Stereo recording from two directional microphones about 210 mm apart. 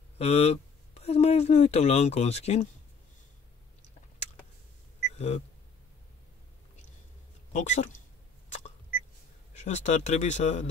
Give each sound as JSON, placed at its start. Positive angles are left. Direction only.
{"t": 0.2, "sound": "speech", "side_deg": 30}
{"t": 5.1, "sound": "single-lens reflex camera", "side_deg": 30}
{"t": 7.5, "sound": "speech", "side_deg": 35}
{"t": 9.7, "sound": "speech", "side_deg": 35}